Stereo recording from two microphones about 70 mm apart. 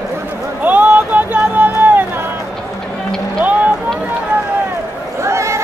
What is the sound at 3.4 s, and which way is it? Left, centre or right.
Boat, right.